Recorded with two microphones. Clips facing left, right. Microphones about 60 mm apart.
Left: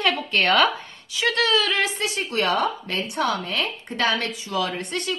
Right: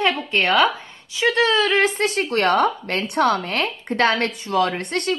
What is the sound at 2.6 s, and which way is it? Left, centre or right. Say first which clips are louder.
Speech: right 5 dB; right.